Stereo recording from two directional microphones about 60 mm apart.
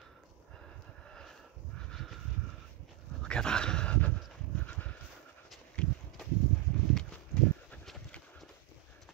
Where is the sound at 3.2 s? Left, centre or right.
Centre.